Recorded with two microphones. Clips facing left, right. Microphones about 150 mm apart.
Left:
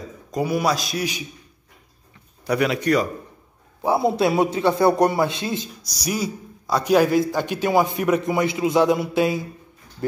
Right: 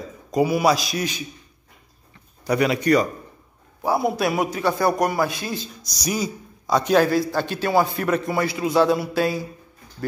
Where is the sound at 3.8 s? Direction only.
25° left (ahead or behind).